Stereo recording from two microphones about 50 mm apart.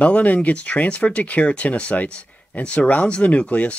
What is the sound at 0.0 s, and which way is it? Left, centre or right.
Speech, left.